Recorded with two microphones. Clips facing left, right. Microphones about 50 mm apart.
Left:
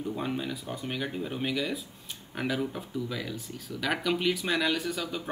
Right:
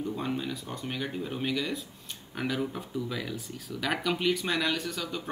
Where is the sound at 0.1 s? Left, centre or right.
Centre.